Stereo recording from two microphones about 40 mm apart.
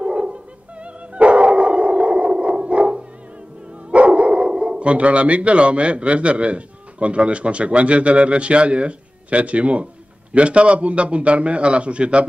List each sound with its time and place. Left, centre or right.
0.0 s dog: right
3.9 s a man's voice: right